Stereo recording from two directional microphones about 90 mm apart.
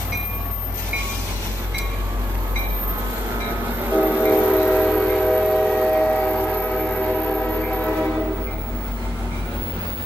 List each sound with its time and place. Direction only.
3.9 s train: 15° right (ahead or behind)
4.2 s train: 15° left (ahead or behind)